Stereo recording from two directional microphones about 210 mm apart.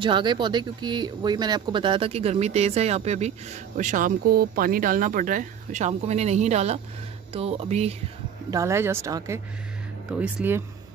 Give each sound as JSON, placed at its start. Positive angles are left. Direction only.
{"t": 0.0, "sound": "speech", "side_deg": -20}
{"t": 8.5, "sound": "speech", "side_deg": -15}